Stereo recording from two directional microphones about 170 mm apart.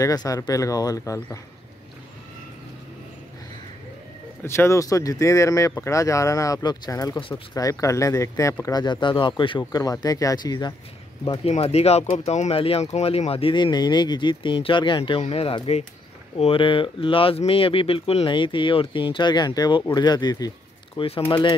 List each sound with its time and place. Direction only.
0.0 s speech: 20° left (ahead or behind)
4.4 s speech: 15° left (ahead or behind)
11.2 s speech: 35° left (ahead or behind)